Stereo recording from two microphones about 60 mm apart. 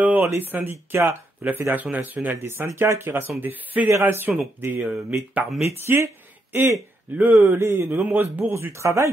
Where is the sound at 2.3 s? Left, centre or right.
Right.